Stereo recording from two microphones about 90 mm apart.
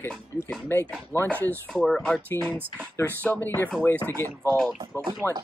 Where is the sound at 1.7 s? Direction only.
5° left (ahead or behind).